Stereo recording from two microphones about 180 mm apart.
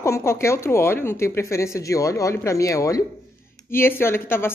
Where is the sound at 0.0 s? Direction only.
15° left (ahead or behind).